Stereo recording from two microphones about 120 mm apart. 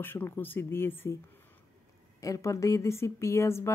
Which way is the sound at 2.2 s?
25° left (ahead or behind).